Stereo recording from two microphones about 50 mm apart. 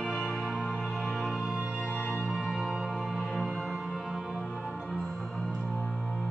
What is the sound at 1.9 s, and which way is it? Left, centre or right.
Music, left.